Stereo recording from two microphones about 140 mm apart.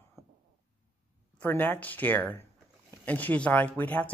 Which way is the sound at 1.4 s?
15° left (ahead or behind).